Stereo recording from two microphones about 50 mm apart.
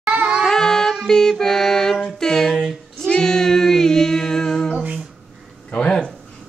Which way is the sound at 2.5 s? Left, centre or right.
Centre.